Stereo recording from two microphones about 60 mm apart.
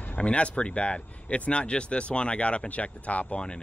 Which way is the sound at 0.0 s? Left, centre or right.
Left.